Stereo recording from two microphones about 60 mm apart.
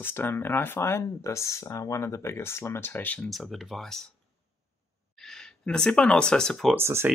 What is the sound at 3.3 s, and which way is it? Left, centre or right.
Speech, centre.